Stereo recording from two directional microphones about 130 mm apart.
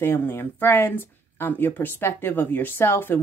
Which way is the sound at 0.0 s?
15° left (ahead or behind).